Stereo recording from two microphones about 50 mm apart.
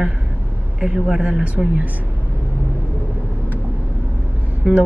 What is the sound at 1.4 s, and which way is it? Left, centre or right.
Speech, right.